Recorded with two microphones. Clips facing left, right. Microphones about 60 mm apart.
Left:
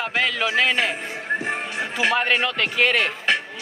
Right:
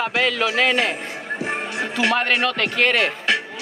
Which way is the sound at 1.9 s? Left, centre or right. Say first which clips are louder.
Right 1 dB; centre.